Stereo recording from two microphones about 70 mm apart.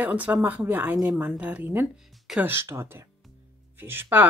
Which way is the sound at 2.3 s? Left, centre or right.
Centre.